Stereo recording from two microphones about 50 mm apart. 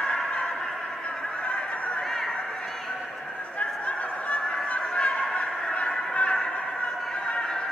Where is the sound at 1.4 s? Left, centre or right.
Left.